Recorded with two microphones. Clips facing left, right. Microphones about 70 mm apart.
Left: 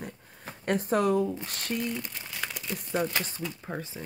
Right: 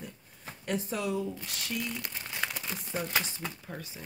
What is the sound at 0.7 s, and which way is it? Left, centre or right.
Speech, left.